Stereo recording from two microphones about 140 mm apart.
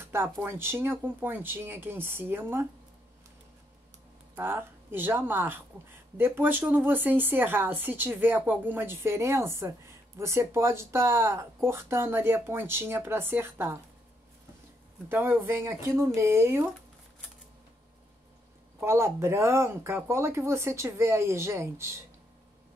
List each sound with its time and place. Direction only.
0.0 s speech: 15° right (ahead or behind)
4.4 s speech: 15° right (ahead or behind)
15.0 s speech: 15° right (ahead or behind)
18.8 s speech: 20° right (ahead or behind)